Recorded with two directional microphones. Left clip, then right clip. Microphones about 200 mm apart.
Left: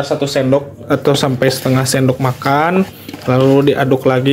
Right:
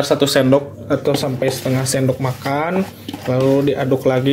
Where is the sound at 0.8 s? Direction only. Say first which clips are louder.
Left 4 dB; 20° left (ahead or behind).